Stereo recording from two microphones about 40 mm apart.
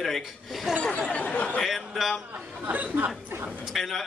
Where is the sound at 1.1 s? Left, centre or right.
Left.